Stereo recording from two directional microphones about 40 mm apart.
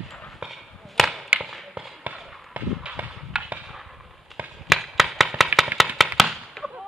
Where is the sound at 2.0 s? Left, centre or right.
Right.